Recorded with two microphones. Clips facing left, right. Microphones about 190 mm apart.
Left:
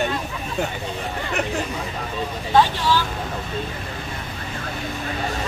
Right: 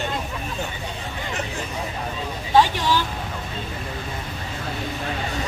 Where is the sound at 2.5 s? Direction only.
15° right (ahead or behind).